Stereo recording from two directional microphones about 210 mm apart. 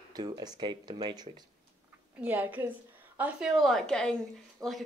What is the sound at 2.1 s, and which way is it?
A woman's voice, 10° right (ahead or behind).